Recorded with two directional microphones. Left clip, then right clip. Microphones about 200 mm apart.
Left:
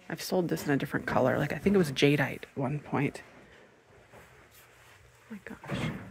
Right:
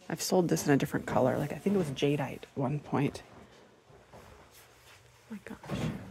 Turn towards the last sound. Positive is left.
turn(degrees=-5)  # may be behind; listen again after turning